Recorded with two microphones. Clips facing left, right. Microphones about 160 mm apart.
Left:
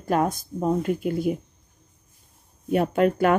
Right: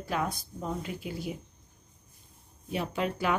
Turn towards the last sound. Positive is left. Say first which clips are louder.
# left 10 dB
turn(degrees=50)  # may be behind; listen again after turning